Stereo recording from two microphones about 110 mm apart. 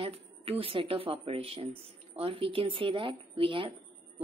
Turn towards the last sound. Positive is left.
turn(degrees=-50)  # may be behind; listen again after turning